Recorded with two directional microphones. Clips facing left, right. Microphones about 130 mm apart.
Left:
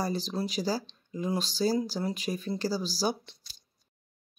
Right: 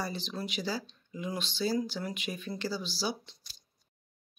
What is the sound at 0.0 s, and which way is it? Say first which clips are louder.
Speech: left 5 dB; 40° left (ahead or behind).